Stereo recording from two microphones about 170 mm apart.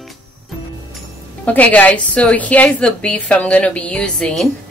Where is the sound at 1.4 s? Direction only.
10° left (ahead or behind).